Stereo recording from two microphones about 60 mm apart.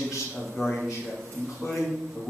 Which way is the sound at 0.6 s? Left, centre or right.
Centre.